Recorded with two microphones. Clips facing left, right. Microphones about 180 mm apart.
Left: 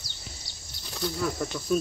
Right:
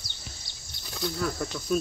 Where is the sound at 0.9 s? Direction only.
5° left (ahead or behind).